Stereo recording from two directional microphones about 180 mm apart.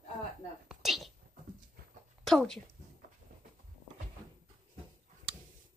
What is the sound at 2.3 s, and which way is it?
Speech, centre (ahead or behind).